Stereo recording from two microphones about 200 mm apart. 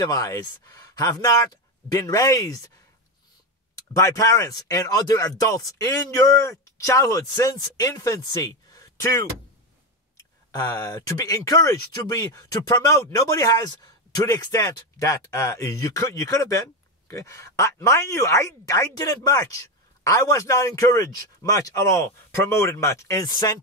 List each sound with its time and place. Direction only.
0.0 s speech: 15° left (ahead or behind)
3.9 s speech: 15° left (ahead or behind)
10.5 s speech: 15° left (ahead or behind)